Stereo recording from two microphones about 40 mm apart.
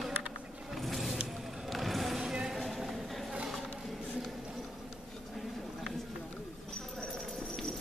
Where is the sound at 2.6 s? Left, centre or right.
Centre.